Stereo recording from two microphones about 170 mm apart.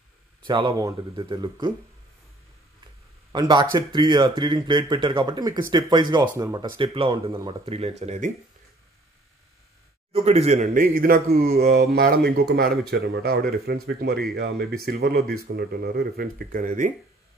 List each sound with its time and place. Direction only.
0.5 s speech: 25° right (ahead or behind)
3.3 s speech: 25° right (ahead or behind); by 8.3 s 40° right (ahead or behind)
10.1 s a man's voice: 40° right (ahead or behind)
10.7 s speech: 55° right (ahead or behind)